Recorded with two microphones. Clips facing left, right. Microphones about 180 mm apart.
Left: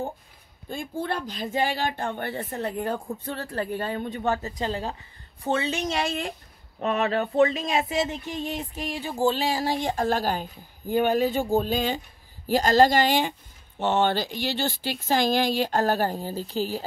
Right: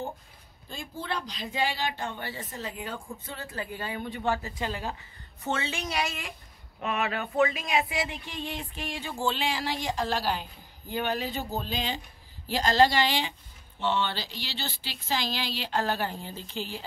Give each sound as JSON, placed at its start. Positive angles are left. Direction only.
{"t": 0.7, "sound": "speech", "side_deg": 50}
{"t": 8.8, "sound": "speech", "side_deg": 35}